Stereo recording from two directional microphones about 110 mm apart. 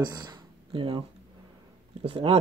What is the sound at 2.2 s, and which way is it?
Speech, 55° right (ahead or behind).